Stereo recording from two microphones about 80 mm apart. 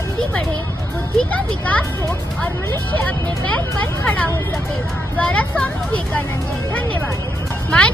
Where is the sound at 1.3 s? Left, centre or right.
Centre.